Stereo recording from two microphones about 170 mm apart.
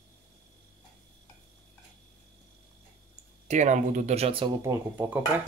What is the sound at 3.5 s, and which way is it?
Speech, 45° right (ahead or behind).